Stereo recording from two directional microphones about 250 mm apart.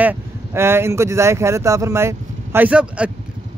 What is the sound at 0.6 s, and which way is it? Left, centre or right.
Speech, centre.